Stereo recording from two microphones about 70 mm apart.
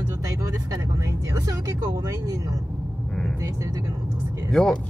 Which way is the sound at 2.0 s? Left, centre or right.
Right.